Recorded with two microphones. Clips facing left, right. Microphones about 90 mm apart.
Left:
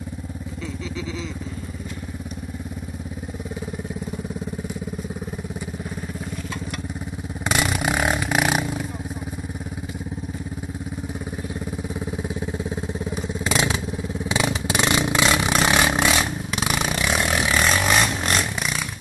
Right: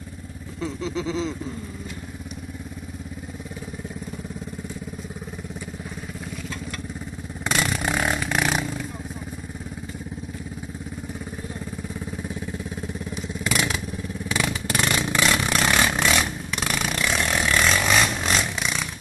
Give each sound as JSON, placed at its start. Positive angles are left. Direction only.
{"t": 0.6, "sound": "speech", "side_deg": -30}
{"t": 7.4, "sound": "vehicle", "side_deg": 10}
{"t": 12.2, "sound": "vehicle", "side_deg": 20}
{"t": 13.4, "sound": "motorcycle", "side_deg": 25}